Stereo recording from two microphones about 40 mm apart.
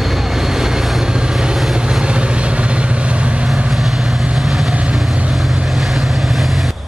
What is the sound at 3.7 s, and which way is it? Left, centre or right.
Vehicle, centre.